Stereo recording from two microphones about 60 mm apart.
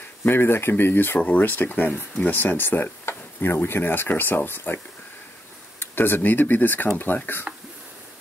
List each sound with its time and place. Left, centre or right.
0.2 s speech: left
5.8 s speech: left
7.5 s a sound: centre